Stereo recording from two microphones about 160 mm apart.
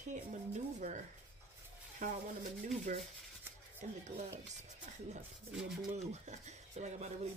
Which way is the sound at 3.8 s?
50° right (ahead or behind).